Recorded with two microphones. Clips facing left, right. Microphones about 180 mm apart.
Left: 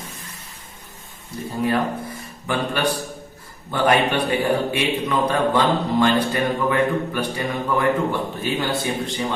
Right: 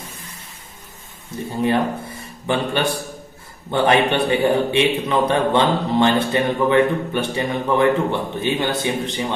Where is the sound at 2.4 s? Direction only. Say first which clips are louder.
Right 2 dB; 25° right (ahead or behind).